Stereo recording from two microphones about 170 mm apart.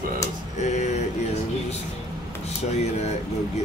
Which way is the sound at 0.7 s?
45° left (ahead or behind).